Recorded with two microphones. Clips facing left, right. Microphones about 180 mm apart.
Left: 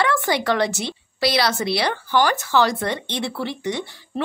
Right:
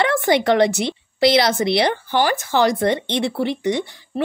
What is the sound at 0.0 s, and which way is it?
A woman's voice, 20° right (ahead or behind).